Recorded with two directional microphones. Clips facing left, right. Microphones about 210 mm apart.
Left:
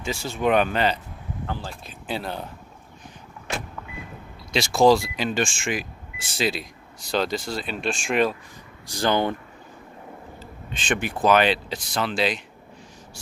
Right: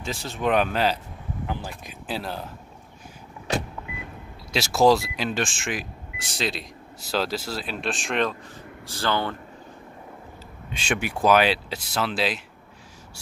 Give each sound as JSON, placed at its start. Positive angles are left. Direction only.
{"t": 0.0, "sound": "speech", "side_deg": 0}
{"t": 1.4, "sound": "speech", "side_deg": -15}
{"t": 2.0, "sound": "speech", "side_deg": 0}
{"t": 4.5, "sound": "speech", "side_deg": -5}
{"t": 8.8, "sound": "speech", "side_deg": 15}
{"t": 10.7, "sound": "speech", "side_deg": -10}